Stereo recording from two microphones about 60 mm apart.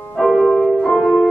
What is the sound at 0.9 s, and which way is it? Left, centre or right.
Music, centre.